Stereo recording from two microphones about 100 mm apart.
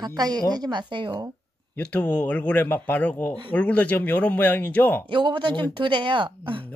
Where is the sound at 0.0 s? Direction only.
40° right (ahead or behind).